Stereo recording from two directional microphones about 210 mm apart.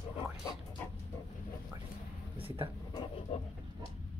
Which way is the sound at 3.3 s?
30° left (ahead or behind).